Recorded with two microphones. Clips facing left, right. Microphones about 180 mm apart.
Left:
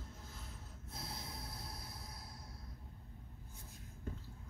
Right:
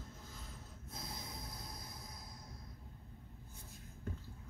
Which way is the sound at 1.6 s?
5° left (ahead or behind).